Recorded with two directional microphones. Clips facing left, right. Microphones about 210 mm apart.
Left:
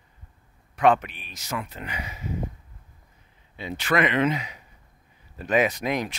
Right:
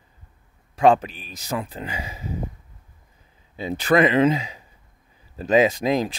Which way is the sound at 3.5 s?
35° right (ahead or behind).